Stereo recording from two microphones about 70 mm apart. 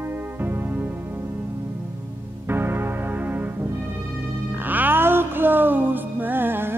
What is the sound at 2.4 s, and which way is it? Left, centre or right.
Music, right.